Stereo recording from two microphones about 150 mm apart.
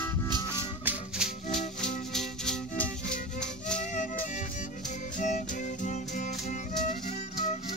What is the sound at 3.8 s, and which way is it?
Music, 55° left (ahead or behind).